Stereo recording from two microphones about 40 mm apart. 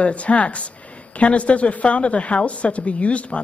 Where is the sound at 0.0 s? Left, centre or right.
Left.